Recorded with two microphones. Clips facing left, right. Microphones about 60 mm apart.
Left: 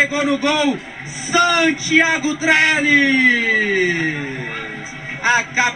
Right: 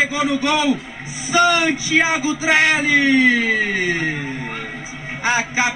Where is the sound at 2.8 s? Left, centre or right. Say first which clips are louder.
Left 1 dB; left.